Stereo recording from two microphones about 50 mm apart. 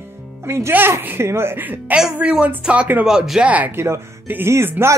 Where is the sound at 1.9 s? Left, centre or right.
Right.